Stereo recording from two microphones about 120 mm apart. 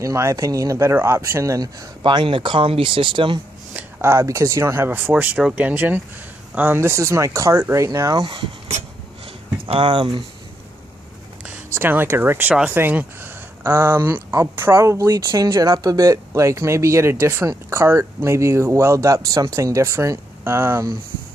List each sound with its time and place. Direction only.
0.0 s speech: 25° right (ahead or behind); by 3.3 s 45° right (ahead or behind)
3.7 s speech: 20° right (ahead or behind)
9.7 s speech: 45° right (ahead or behind)
11.4 s speech: 15° right (ahead or behind)